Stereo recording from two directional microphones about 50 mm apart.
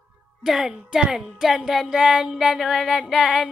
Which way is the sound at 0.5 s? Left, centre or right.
Centre.